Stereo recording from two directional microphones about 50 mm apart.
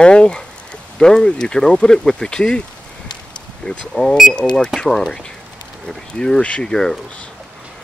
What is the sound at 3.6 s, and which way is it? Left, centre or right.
Speech, centre.